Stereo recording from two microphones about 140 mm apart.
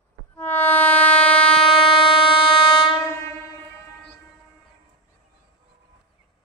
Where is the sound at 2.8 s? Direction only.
35° left (ahead or behind).